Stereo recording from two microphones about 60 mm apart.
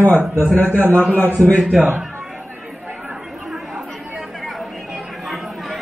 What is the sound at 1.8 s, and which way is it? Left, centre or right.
Speech, centre.